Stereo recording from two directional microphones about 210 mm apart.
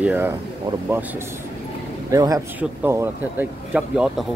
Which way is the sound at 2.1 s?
15° right (ahead or behind).